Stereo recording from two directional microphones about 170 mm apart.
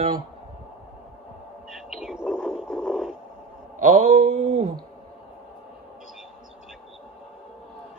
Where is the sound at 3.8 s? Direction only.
45° right (ahead or behind).